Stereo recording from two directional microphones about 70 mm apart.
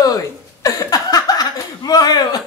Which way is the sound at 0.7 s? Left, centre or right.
Left.